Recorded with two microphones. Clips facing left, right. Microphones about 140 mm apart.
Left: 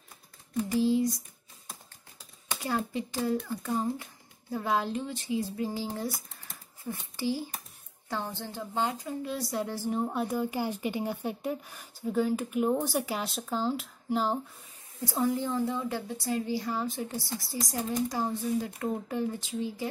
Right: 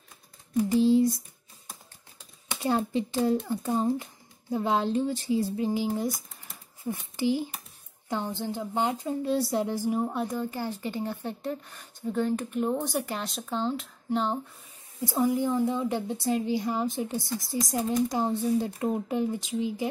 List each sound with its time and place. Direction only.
0.7 s speech: 25° right (ahead or behind)
2.6 s speech: 25° right (ahead or behind)
5.6 s a child's voice: 15° right (ahead or behind); by 14.4 s 5° left (ahead or behind)
15.0 s speech: 20° right (ahead or behind)
18.8 s speech: 20° right (ahead or behind)